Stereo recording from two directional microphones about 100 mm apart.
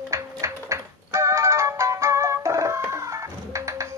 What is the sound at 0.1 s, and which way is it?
Music, 30° right (ahead or behind).